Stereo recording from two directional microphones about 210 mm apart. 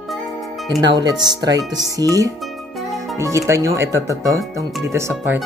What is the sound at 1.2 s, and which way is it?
Speech, 20° right (ahead or behind).